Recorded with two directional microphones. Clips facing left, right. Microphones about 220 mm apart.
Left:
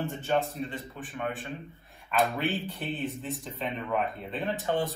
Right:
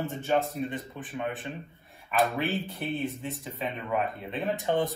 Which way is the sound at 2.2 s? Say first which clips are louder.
Right 1 dB; centre (ahead or behind).